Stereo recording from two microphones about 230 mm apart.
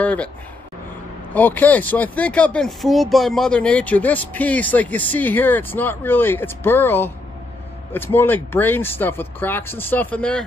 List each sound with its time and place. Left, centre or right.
0.0 s speech: centre
1.3 s speech: centre